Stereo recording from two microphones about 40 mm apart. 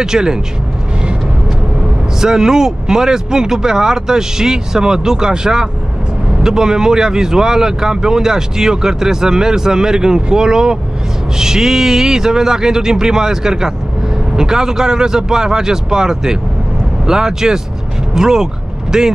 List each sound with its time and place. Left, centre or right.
0.0 s speech: centre
2.1 s speech: centre